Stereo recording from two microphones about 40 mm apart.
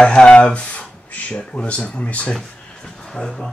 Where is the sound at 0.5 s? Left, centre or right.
Left.